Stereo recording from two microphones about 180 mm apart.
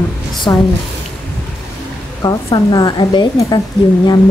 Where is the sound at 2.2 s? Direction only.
20° left (ahead or behind).